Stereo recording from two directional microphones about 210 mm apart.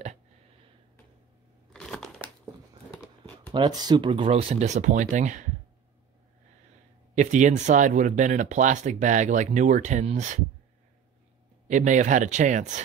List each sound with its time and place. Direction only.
1.7 s crushing: 5° left (ahead or behind)
2.9 s a sound: 10° left (ahead or behind)
3.5 s speech: 20° right (ahead or behind); by 5.5 s 35° right (ahead or behind)
7.2 s speech: 35° right (ahead or behind)
11.7 s speech: 35° right (ahead or behind)